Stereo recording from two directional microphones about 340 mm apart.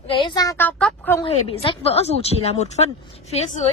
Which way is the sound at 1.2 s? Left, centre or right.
Centre.